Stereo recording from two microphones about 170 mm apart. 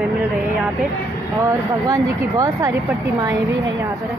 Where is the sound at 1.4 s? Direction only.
20° right (ahead or behind).